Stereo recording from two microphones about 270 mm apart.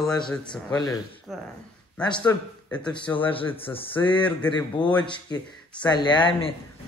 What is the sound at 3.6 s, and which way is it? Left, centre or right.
A man's voice, left.